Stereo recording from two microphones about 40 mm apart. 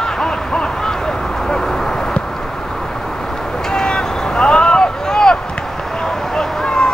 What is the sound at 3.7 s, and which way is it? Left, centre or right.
Vehicle, centre.